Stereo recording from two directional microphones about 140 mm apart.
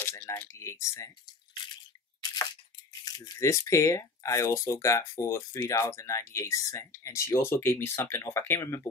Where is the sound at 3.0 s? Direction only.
25° left (ahead or behind).